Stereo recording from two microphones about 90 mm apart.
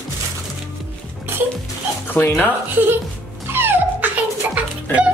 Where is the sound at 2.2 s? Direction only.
25° left (ahead or behind).